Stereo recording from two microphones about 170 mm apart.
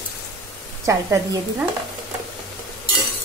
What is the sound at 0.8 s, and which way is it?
Speech, 20° right (ahead or behind).